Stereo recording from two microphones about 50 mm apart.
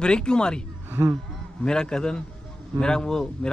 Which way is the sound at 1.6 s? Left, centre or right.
Centre.